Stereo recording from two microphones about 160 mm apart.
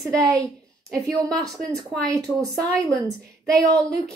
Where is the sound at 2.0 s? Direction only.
20° right (ahead or behind).